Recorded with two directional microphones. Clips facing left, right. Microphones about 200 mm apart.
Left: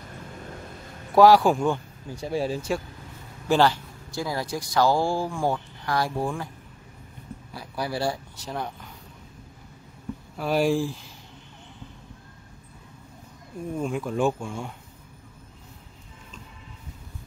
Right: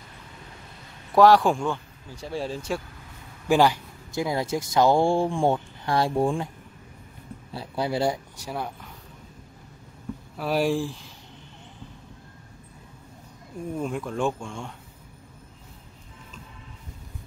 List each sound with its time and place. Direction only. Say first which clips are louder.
1.1 s speech: left 1 dB; 5° left (ahead or behind)
3.4 s speech: right 1 dB; 10° right (ahead or behind)
7.5 s speech: right 3 dB; 25° right (ahead or behind); by 8.7 s 10° right (ahead or behind)
10.3 s speech: left 1 dB; centre (ahead or behind)
13.7 s speech: left 2 dB; centre (ahead or behind)